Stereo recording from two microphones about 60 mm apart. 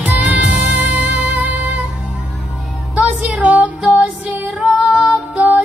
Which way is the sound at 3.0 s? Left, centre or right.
Right.